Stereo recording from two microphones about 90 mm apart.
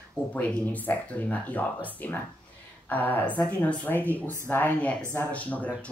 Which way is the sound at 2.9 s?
20° left (ahead or behind).